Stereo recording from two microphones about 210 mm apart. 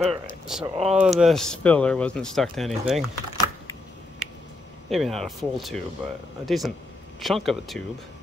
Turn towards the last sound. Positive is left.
turn(degrees=0)  # may be behind; listen again after turning